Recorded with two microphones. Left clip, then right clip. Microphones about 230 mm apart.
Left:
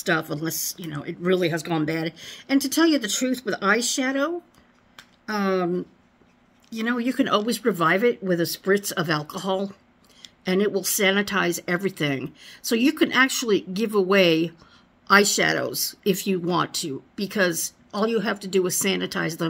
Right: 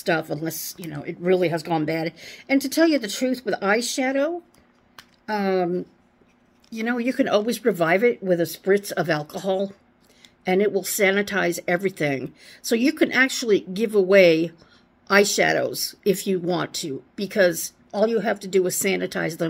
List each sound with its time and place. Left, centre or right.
0.1 s speech: left
1.4 s speech: centre
1.8 s speech: left
5.6 s speech: centre
6.7 s speech: left
7.0 s speech: centre
7.2 s speech: left
8.2 s speech: centre
8.8 s speech: left
16.6 s speech: centre
17.6 s speech: left